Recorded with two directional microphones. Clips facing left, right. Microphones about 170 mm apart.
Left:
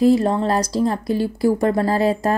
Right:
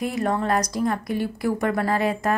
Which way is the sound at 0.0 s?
30° left (ahead or behind).